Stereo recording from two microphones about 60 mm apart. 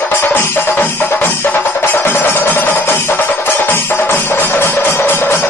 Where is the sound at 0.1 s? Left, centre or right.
Left.